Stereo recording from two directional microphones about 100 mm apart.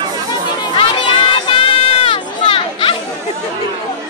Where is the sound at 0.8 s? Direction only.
60° left (ahead or behind).